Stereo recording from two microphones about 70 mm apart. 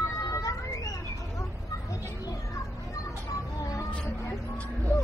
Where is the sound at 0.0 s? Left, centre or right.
Left.